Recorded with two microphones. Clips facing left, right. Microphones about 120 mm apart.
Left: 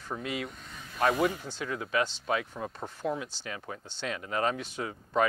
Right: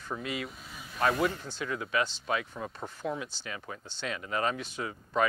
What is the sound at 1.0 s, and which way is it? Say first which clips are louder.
Speech: left 1 dB; 15° left (ahead or behind).